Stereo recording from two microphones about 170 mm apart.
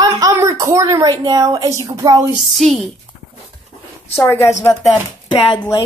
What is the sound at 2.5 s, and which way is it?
Speech, centre (ahead or behind).